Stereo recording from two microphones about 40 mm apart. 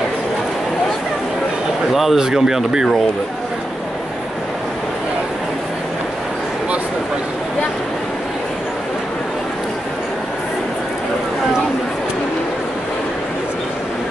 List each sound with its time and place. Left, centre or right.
2.1 s speech: centre